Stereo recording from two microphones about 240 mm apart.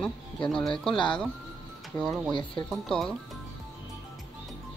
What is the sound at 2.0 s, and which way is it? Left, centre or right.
Speech, centre.